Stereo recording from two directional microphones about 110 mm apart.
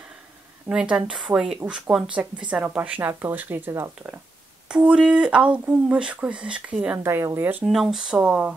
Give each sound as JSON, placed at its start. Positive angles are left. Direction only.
{"t": 0.7, "sound": "speech", "side_deg": -10}
{"t": 4.6, "sound": "speech", "side_deg": -10}
{"t": 7.6, "sound": "speech", "side_deg": 0}